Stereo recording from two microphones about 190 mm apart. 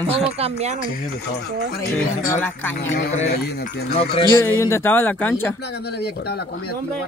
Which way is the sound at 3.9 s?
30° left (ahead or behind).